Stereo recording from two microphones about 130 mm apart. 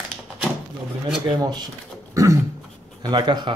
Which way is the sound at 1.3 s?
30° right (ahead or behind).